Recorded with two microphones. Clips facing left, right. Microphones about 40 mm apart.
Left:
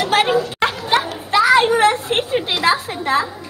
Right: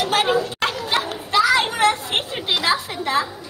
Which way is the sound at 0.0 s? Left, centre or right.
Left.